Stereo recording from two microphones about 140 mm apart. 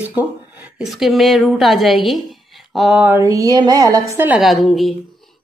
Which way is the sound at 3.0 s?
20° right (ahead or behind).